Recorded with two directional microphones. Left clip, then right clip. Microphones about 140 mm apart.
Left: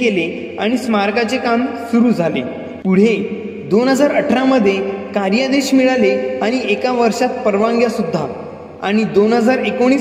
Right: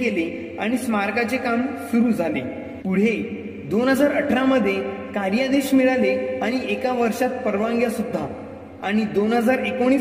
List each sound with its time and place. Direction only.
0.6 s a woman's voice: 30° left (ahead or behind)